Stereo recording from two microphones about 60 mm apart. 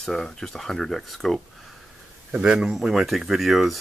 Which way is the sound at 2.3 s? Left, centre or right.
Centre.